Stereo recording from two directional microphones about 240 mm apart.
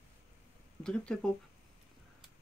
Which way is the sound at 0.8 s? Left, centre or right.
Centre.